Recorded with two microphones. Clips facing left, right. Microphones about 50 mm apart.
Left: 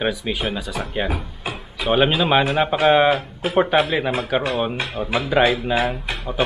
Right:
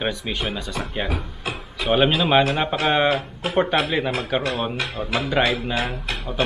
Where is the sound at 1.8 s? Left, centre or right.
Centre.